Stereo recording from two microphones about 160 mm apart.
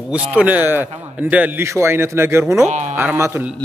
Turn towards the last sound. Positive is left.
turn(degrees=-15)  # may be behind; listen again after turning